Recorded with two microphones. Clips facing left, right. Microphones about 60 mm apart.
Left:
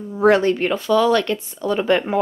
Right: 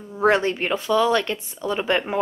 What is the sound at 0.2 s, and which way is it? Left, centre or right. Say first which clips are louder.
Speech: left 4 dB; right.